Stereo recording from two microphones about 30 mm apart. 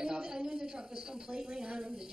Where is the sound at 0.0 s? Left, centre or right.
Right.